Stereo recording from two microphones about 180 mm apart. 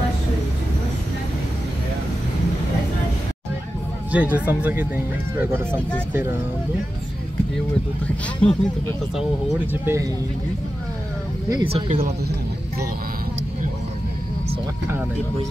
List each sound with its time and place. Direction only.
4.1 s speech: 10° right (ahead or behind)
8.4 s speech: 5° left (ahead or behind)
9.7 s speech: 15° right (ahead or behind)
11.5 s speech: 30° right (ahead or behind)